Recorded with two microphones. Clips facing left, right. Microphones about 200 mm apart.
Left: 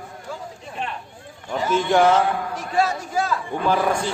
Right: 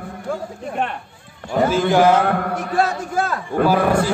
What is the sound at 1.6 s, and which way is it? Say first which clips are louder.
A man's voice: right 3 dB; 55° right (ahead or behind).